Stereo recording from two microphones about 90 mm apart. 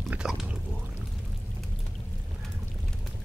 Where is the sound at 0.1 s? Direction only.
5° right (ahead or behind).